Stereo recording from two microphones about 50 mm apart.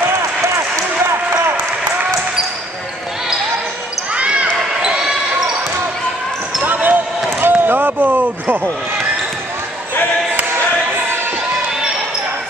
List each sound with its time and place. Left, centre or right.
4.1 s basketball bounce: right
6.6 s basketball bounce: right